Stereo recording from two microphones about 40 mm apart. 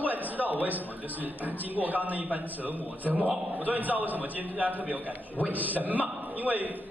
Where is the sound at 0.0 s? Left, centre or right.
Right.